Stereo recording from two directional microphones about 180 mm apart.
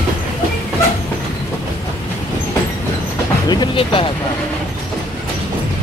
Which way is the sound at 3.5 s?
25° left (ahead or behind).